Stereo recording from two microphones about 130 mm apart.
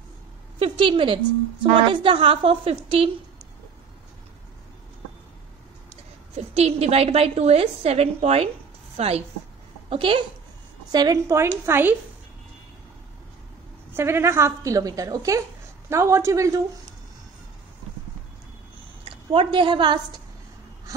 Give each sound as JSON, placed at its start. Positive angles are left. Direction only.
{"t": 0.6, "sound": "a woman's voice", "side_deg": -40}
{"t": 6.3, "sound": "a woman's voice", "side_deg": -55}
{"t": 10.9, "sound": "a woman's voice", "side_deg": -30}
{"t": 13.9, "sound": "a woman's voice", "side_deg": -20}
{"t": 19.0, "sound": "a woman's voice", "side_deg": -40}